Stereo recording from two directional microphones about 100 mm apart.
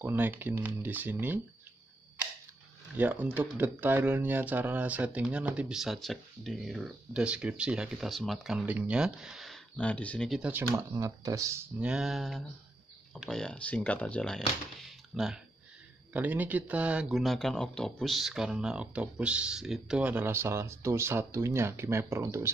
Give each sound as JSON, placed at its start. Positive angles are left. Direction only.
{"t": 0.0, "sound": "speech", "side_deg": -20}
{"t": 3.0, "sound": "speech", "side_deg": -15}
{"t": 8.6, "sound": "speech", "side_deg": -15}
{"t": 9.8, "sound": "speech", "side_deg": 15}
{"t": 10.8, "sound": "speech", "side_deg": -35}
{"t": 11.8, "sound": "speech", "side_deg": -5}
{"t": 16.1, "sound": "speech", "side_deg": -15}
{"t": 17.1, "sound": "speech", "side_deg": 0}